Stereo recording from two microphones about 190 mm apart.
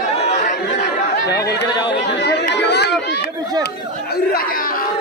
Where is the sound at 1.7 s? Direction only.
20° left (ahead or behind).